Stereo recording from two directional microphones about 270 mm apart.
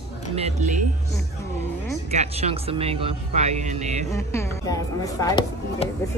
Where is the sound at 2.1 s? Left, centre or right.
Right.